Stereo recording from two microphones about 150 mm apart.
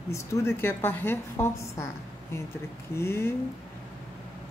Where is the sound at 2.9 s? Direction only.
15° left (ahead or behind).